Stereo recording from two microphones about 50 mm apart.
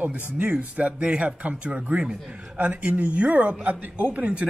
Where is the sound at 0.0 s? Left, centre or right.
Right.